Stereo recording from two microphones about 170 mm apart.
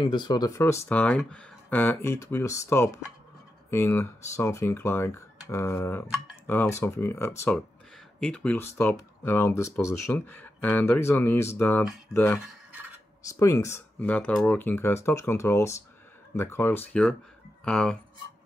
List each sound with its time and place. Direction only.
0.0 s speech: 25° left (ahead or behind); by 17.9 s 5° left (ahead or behind)